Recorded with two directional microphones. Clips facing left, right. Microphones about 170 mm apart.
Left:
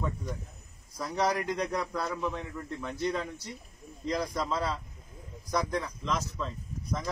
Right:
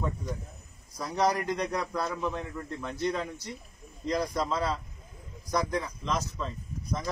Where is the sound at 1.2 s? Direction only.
5° left (ahead or behind).